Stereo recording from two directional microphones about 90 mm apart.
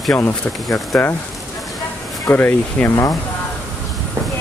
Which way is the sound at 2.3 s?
20° left (ahead or behind).